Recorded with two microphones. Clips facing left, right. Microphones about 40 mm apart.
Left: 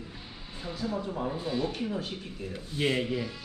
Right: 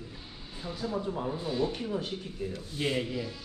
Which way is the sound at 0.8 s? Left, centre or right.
Centre.